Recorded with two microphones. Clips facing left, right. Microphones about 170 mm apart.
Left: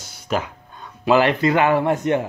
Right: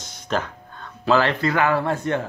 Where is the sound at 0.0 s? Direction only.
10° left (ahead or behind).